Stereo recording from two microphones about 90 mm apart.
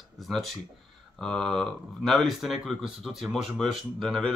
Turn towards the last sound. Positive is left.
turn(degrees=5)  # may be behind; listen again after turning